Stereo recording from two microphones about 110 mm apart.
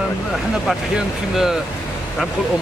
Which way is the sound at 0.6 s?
5° right (ahead or behind).